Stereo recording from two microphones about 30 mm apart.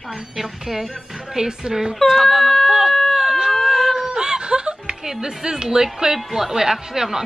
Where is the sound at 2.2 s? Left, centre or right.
Centre.